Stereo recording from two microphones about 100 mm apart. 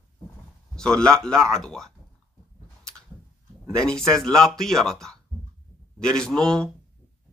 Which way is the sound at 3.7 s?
5° left (ahead or behind).